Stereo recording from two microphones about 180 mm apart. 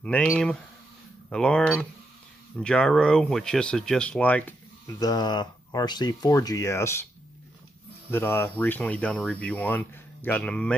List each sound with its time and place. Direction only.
0.0 s speech: 5° left (ahead or behind)
4.9 s speech: 20° left (ahead or behind)
8.1 s speech: 10° left (ahead or behind)